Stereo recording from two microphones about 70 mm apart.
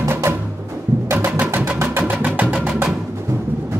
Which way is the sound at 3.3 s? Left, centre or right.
Right.